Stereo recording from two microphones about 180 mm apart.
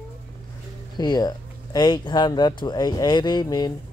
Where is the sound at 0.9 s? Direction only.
20° left (ahead or behind).